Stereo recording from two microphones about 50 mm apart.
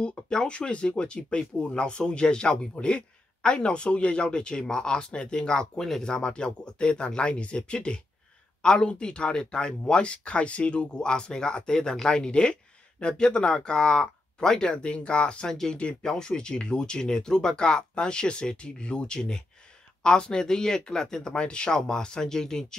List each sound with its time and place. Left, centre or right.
0.0 s speech: centre